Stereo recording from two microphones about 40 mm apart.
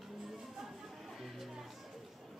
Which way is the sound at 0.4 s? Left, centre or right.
Centre.